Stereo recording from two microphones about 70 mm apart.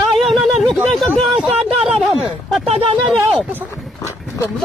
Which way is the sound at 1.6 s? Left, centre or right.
Centre.